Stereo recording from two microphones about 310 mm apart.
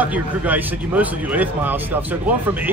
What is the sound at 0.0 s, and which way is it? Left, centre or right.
Speech, centre.